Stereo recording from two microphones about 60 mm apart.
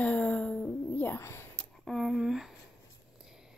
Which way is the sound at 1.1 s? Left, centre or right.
Left.